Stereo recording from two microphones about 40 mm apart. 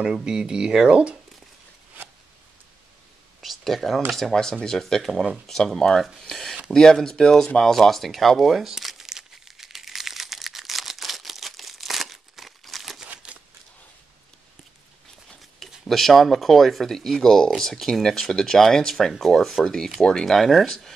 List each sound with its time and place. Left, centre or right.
0.0 s speech: right
3.4 s speech: centre
5.0 s speech: centre
7.8 s crumpling: centre
9.8 s a sound: centre
15.8 s speech: centre